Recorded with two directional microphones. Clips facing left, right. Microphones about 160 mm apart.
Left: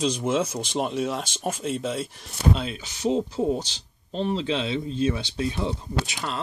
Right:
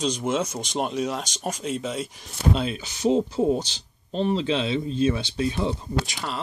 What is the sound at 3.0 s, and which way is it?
Speech, 40° right (ahead or behind).